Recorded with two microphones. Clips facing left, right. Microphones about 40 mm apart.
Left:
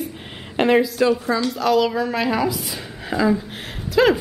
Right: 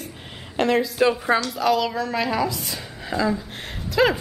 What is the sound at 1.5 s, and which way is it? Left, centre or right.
A woman's voice, centre.